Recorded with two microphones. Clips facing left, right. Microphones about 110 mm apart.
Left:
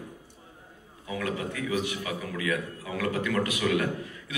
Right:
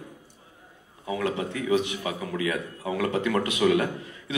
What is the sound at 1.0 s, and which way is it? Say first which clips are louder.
A man's voice: right 4 dB; 25° right (ahead or behind).